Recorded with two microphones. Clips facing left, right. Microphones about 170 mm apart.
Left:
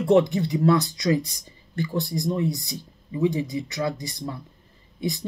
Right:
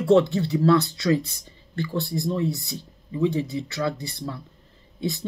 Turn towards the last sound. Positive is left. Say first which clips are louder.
# even
turn(degrees=15)  # may be behind; listen again after turning